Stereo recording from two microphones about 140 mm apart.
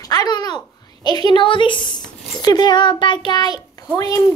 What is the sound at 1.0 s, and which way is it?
Speech, 30° left (ahead or behind).